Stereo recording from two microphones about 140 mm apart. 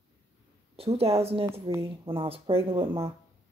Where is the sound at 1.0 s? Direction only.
45° right (ahead or behind).